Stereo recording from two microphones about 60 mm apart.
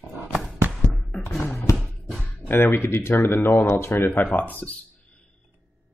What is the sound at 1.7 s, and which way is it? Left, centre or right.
Music, left.